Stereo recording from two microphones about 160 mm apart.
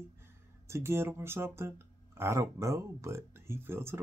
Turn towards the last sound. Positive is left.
turn(degrees=-15)  # may be behind; listen again after turning